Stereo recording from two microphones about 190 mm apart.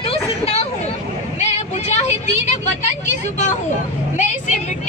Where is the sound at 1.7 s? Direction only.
35° left (ahead or behind).